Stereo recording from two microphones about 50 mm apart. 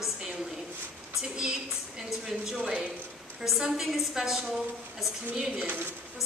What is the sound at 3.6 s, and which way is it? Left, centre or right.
Speech, centre.